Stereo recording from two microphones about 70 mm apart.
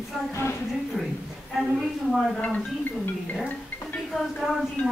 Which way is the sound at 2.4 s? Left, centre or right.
Left.